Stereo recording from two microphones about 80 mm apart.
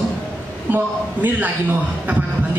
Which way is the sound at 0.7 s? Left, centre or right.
Right.